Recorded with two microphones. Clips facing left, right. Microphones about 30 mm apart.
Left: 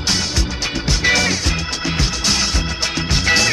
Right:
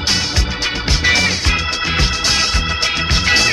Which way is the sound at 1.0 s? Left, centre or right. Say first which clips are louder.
Right 2 dB; right.